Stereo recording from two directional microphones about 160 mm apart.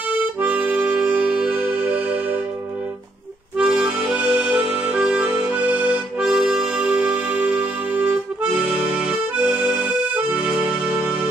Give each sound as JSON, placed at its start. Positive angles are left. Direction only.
{"t": 0.1, "sound": "music", "side_deg": -10}
{"t": 3.5, "sound": "music", "side_deg": -5}
{"t": 9.4, "sound": "accordion", "side_deg": -5}